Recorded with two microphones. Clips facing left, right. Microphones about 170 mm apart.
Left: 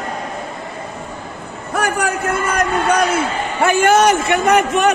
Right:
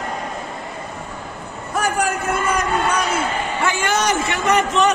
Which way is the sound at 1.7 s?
65° left (ahead or behind).